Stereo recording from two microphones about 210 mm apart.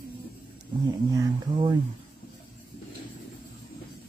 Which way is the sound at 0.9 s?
15° right (ahead or behind).